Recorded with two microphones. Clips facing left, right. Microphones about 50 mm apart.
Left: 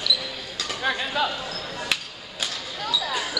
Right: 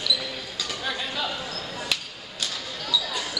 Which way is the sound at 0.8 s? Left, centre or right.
Left.